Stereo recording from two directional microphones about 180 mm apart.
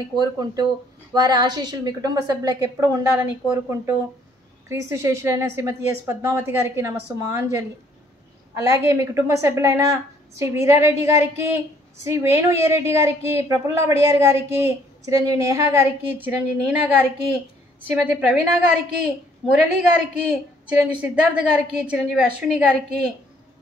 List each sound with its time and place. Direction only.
0.0 s a woman's voice: 20° right (ahead or behind); by 19.6 s centre (ahead or behind)
20.7 s a woman's voice: 5° right (ahead or behind)